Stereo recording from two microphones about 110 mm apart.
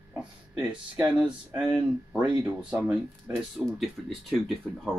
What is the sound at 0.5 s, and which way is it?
Speech, 10° right (ahead or behind).